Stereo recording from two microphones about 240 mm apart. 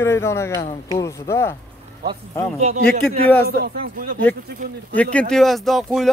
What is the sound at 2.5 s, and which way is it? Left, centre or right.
Speech, right.